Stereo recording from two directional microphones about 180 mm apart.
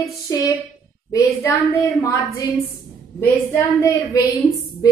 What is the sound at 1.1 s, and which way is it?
A woman's voice, 15° left (ahead or behind).